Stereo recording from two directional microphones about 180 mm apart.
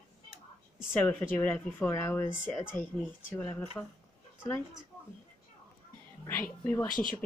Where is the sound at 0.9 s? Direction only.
10° left (ahead or behind).